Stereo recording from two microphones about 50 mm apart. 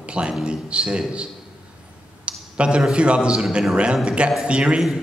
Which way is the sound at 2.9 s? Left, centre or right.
Right.